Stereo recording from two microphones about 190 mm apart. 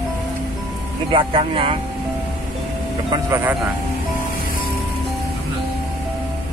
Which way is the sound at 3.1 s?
15° right (ahead or behind).